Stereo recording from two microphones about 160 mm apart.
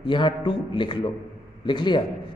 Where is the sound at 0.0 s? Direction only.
30° left (ahead or behind).